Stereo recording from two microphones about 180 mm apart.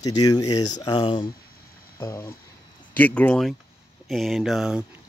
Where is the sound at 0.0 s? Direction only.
20° left (ahead or behind).